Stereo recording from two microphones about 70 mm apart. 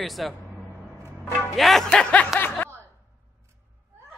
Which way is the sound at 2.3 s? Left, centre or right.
Centre.